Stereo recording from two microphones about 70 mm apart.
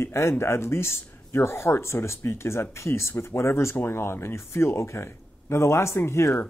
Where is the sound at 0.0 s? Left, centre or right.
Left.